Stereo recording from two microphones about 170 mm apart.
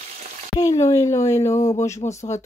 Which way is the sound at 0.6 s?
20° left (ahead or behind).